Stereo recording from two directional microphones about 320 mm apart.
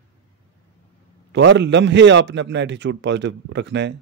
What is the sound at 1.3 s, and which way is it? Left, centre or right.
A man's voice, right.